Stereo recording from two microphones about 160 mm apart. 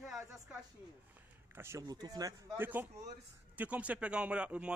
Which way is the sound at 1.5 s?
15° right (ahead or behind).